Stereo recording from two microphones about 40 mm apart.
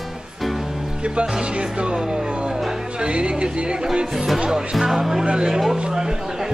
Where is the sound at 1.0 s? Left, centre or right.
Right.